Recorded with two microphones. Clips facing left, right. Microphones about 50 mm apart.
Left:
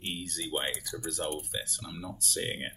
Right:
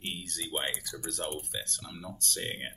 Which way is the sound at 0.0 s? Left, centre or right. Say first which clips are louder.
Left 2 dB; centre.